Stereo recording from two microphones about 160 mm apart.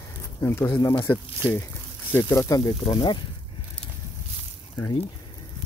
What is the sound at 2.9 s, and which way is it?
Speech, 35° left (ahead or behind).